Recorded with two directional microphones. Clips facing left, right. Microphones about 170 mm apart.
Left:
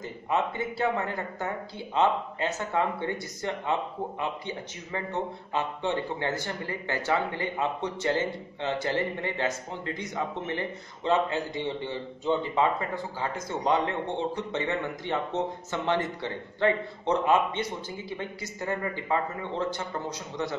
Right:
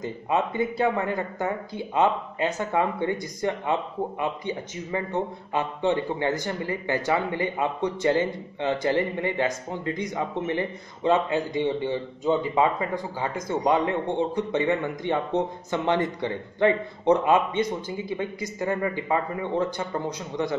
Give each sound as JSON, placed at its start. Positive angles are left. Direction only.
{"t": 0.0, "sound": "a man's voice", "side_deg": -15}